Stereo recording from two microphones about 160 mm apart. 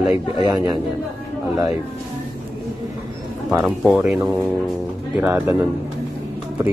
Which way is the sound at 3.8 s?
5° right (ahead or behind).